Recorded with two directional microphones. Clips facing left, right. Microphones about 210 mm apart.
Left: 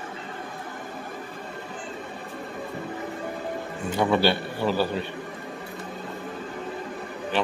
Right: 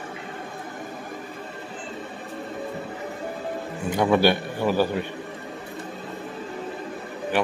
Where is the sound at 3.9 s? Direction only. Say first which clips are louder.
Right 2 dB; 15° right (ahead or behind).